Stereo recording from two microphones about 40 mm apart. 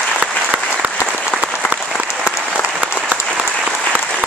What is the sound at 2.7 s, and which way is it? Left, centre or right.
Applause, right.